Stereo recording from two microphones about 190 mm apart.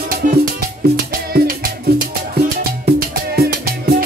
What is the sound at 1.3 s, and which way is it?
Music, 50° right (ahead or behind).